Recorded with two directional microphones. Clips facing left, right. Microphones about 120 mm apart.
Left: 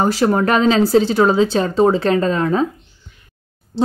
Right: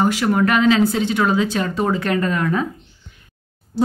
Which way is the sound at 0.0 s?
35° left (ahead or behind).